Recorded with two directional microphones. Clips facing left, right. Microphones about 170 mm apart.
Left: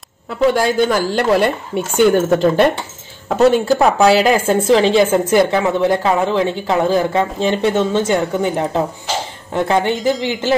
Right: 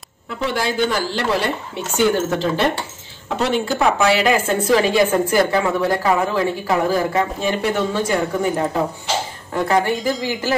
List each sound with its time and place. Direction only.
0.6 s a woman's voice: 50° left (ahead or behind)
3.3 s a woman's voice: 40° left (ahead or behind); by 10.5 s 20° left (ahead or behind)